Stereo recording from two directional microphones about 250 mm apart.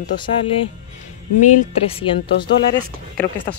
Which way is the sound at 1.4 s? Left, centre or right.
Left.